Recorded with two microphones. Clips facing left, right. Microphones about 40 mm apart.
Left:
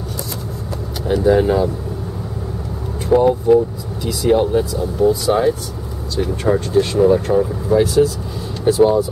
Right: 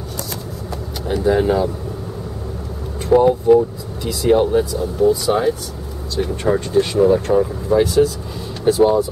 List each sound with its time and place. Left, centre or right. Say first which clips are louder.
1.0 s speech: left 2 dB; centre
3.1 s speech: right 1 dB; centre